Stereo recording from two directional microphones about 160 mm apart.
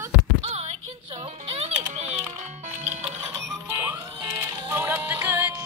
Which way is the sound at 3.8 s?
15° right (ahead or behind).